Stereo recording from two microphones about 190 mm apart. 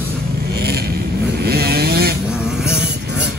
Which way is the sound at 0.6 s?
55° right (ahead or behind).